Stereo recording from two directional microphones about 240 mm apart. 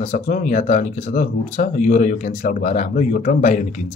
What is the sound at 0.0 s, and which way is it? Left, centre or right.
Speech, left.